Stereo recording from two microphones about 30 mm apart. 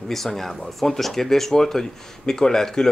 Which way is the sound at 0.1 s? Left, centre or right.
Centre.